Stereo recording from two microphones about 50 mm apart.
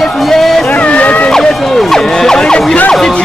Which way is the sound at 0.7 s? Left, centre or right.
Left.